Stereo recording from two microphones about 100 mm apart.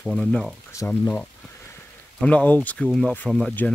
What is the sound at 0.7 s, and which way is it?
Speech, 30° left (ahead or behind).